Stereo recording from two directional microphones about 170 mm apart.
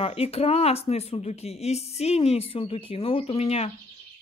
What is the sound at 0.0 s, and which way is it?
Speech, 35° left (ahead or behind).